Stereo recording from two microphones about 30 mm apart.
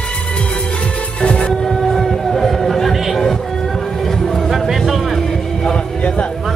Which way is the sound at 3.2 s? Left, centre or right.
Centre.